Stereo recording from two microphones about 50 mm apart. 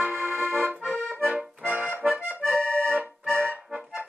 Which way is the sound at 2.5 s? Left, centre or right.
Left.